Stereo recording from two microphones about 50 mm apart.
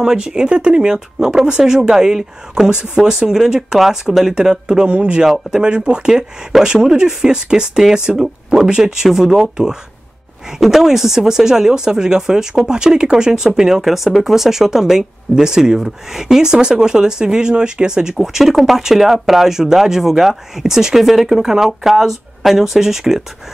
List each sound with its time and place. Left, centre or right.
0.0 s speech: centre
18.1 s speech: centre